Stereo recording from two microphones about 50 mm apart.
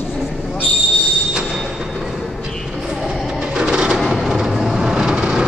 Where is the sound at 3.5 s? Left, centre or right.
Centre.